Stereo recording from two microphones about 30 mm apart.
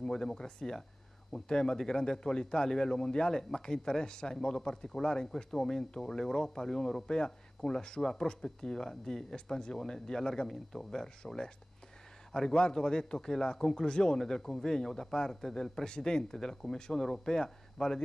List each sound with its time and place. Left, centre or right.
0.0 s speech: left